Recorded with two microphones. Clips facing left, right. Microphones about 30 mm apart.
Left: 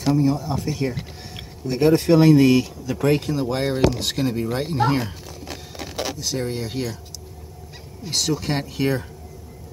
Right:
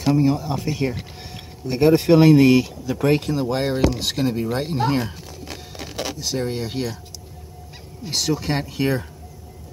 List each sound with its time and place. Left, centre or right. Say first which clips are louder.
0.2 s speech: right 1 dB; centre
8.0 s speech: even; centre